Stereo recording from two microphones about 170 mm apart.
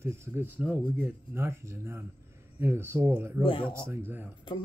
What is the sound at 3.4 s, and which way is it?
Speech, 30° left (ahead or behind).